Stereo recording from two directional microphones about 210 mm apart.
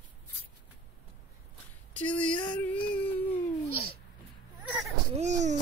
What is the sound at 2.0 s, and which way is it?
Child singing, 5° left (ahead or behind).